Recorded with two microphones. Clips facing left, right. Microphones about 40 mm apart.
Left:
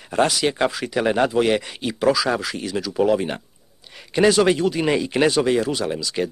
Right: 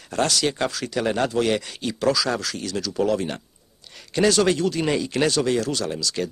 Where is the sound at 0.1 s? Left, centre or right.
Centre.